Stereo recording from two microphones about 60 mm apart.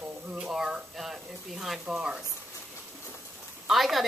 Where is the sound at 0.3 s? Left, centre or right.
Centre.